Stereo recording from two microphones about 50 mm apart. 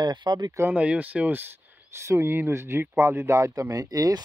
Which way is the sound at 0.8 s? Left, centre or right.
Right.